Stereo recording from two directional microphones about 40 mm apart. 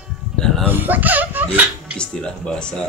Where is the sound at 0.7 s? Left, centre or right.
Right.